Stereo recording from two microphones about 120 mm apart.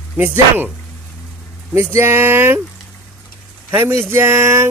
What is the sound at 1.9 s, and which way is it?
Speech, 20° right (ahead or behind).